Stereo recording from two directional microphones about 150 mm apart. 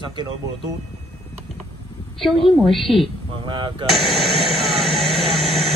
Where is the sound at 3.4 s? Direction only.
35° right (ahead or behind).